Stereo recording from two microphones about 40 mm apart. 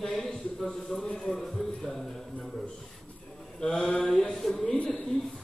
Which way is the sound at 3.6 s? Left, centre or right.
Centre.